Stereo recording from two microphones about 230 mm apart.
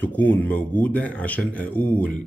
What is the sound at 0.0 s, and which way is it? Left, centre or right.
Speech, centre.